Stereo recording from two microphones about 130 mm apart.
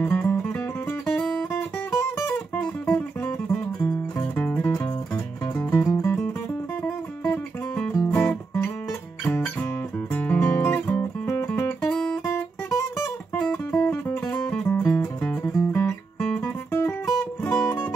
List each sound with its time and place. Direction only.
0.0 s music: 15° left (ahead or behind)
0.6 s music: 5° left (ahead or behind)
1.9 s music: 20° left (ahead or behind)
6.8 s music: 10° left (ahead or behind)
11.8 s music: 5° left (ahead or behind)
12.6 s music: 20° left (ahead or behind)
13.4 s music: 10° left (ahead or behind)
15.4 s music: 20° left (ahead or behind)
16.2 s music: 10° left (ahead or behind)